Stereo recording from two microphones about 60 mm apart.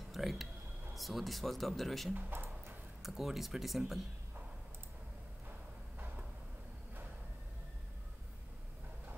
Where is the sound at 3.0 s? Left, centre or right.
Centre.